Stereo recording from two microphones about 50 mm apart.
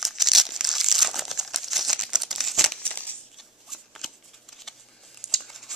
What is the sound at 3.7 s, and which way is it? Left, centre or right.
Shuffling cards, centre.